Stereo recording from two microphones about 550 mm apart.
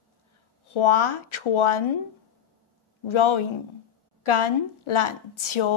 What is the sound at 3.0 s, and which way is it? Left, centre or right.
A woman's voice, left.